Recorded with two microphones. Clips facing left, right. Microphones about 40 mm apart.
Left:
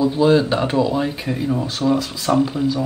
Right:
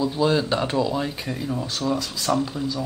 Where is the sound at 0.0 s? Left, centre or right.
Centre.